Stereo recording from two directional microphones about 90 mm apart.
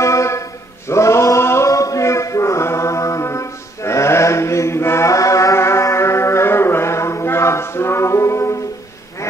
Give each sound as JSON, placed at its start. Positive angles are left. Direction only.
{"t": 0.0, "sound": "a capella", "side_deg": 35}